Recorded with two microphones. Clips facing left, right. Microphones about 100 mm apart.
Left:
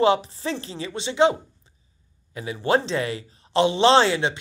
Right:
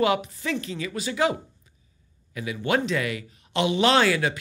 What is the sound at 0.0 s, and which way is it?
Speech, 30° left (ahead or behind).